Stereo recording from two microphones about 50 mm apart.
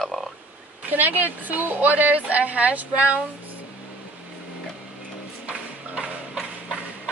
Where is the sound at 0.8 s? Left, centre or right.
Right.